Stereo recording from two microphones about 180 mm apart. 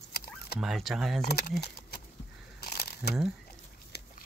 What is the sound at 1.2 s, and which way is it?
Speech, 60° left (ahead or behind).